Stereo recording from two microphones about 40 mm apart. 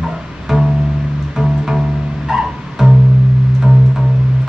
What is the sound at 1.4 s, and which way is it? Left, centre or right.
Music, centre.